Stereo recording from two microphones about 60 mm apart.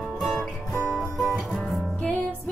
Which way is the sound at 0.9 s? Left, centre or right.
Centre.